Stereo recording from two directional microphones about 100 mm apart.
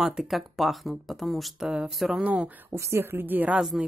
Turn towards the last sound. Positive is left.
turn(degrees=-5)  # may be behind; listen again after turning